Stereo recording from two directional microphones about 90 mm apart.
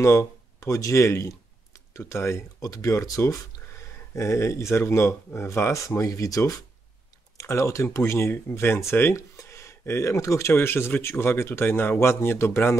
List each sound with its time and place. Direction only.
0.0 s speech: 35° left (ahead or behind)
5.9 s speech: 40° left (ahead or behind)